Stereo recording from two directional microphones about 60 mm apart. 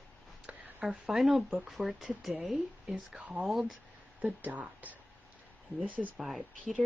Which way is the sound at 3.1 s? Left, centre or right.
Right.